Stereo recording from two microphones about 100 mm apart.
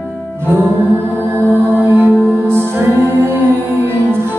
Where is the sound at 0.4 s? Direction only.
20° right (ahead or behind).